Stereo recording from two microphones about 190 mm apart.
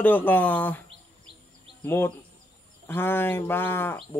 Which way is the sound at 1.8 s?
10° left (ahead or behind).